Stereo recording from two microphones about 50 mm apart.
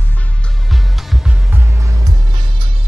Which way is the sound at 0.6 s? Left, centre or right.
Centre.